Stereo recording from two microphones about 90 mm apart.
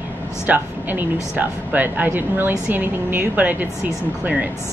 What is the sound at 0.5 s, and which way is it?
A woman's voice, 20° right (ahead or behind).